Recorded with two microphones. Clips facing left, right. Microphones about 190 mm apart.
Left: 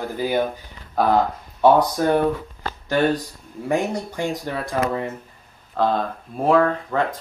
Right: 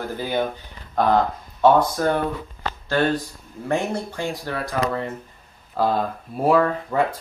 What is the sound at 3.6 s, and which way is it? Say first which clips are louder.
Speech: left 1 dB; 15° left (ahead or behind).